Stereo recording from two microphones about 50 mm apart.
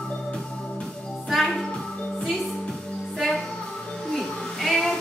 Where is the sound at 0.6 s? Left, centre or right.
Centre.